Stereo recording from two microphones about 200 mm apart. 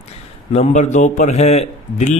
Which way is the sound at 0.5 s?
35° left (ahead or behind).